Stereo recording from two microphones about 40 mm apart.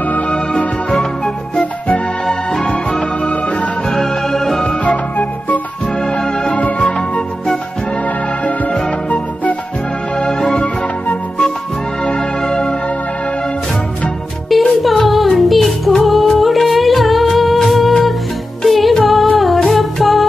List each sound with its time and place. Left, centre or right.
0.0 s music: left
0.3 s music: left
2.2 s music: centre
3.2 s music: left
3.8 s music: centre
4.8 s music: left
5.9 s organ: centre
6.5 s music: left
8.0 s music: left
10.1 s music: left
12.0 s music: left
14.8 s music: centre